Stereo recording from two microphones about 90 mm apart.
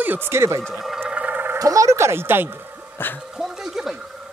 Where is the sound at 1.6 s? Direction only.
40° right (ahead or behind); by 3.0 s 20° right (ahead or behind).